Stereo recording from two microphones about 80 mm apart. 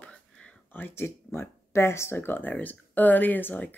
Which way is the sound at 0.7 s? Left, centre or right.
Left.